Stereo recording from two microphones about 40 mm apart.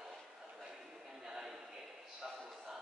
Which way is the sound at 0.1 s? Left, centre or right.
Centre.